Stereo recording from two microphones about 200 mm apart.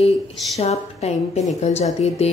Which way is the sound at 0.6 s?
35° left (ahead or behind).